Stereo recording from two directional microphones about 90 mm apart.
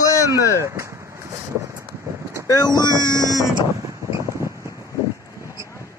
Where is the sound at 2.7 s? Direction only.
50° left (ahead or behind).